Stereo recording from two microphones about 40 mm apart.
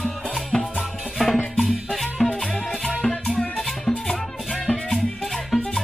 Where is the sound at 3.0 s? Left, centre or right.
Centre.